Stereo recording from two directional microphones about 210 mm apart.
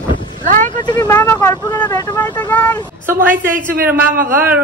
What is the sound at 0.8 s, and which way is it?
Speech, 15° left (ahead or behind).